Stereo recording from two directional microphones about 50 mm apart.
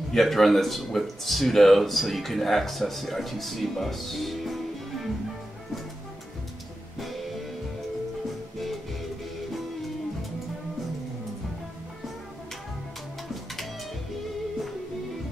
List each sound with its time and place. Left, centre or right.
0.1 s speech: centre
7.0 s music: centre